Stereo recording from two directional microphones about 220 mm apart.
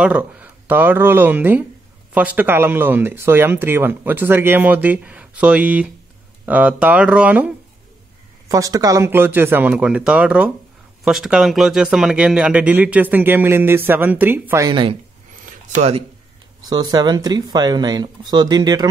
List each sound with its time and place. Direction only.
0.0 s speech: 5° right (ahead or behind)
15.4 s a sound: 30° right (ahead or behind)
16.9 s speech: 20° right (ahead or behind)